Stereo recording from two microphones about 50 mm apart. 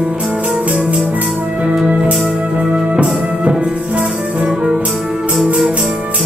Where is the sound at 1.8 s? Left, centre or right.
Right.